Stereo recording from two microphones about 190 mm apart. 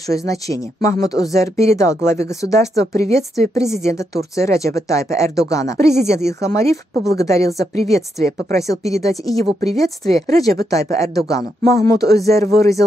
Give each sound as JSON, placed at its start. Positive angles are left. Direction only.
{"t": 0.1, "sound": "a woman's voice", "side_deg": 15}